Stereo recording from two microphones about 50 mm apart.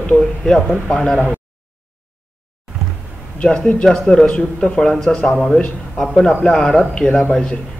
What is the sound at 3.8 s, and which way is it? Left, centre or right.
A man's voice, centre.